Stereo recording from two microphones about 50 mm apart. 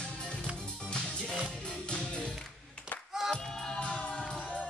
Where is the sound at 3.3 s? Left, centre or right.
Centre.